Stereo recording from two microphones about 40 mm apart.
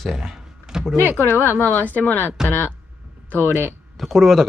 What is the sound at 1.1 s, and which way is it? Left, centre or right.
Speech, left.